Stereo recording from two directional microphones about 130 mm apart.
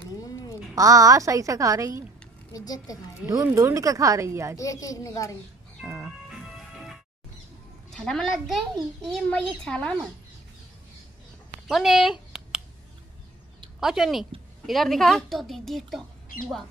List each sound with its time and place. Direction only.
0.0 s quack: 30° left (ahead or behind)
0.7 s a woman's voice: 25° right (ahead or behind)
2.5 s a child's voice: 30° left (ahead or behind)
3.2 s speech: 10° right (ahead or behind)
3.5 s a woman's voice: 25° right (ahead or behind)
4.6 s a child's voice: 25° left (ahead or behind)
5.9 s music: 15° right (ahead or behind)
7.9 s a woman's voice: 5° left (ahead or behind)
11.6 s a sound: centre (ahead or behind)
13.7 s a woman's voice: 5° right (ahead or behind)